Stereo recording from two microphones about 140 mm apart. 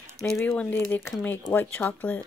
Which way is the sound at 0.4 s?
10° left (ahead or behind).